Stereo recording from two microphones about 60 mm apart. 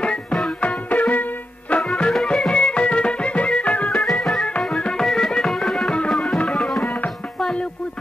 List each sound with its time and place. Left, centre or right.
0.0 s music: centre
1.8 s music: centre
2.5 s music: centre
3.9 s music: centre
4.6 s music: centre
6.3 s tabla: left
6.6 s tabla: centre
7.3 s music: centre